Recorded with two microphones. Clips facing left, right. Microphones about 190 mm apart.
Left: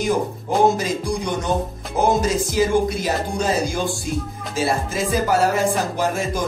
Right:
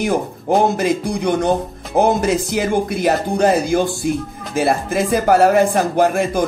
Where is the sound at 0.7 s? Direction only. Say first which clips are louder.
Right 5 dB; 60° right (ahead or behind).